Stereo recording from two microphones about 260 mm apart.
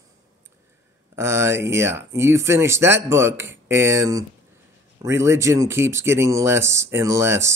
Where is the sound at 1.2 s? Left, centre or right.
Centre.